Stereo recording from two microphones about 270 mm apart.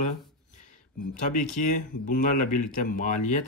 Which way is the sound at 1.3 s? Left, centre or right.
Left.